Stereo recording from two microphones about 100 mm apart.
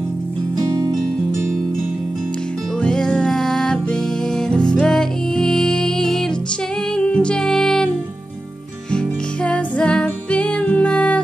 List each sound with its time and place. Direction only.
0.6 s music: 40° right (ahead or behind)
2.8 s music: 5° left (ahead or behind)
8.9 s music: 10° left (ahead or behind)